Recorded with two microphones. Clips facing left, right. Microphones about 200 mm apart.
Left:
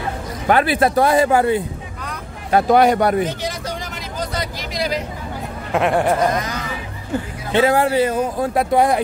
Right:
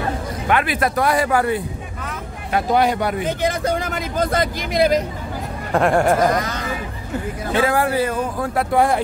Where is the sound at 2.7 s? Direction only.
50° left (ahead or behind).